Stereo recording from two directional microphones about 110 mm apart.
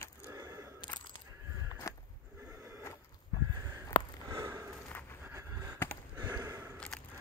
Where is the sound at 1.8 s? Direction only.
30° left (ahead or behind).